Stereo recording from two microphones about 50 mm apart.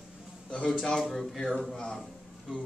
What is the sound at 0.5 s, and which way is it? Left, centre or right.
A man's voice, centre.